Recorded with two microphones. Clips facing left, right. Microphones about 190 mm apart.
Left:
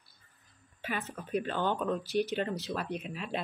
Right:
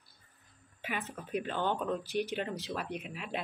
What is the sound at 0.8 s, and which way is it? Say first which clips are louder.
Speech: left 2 dB; 15° right (ahead or behind).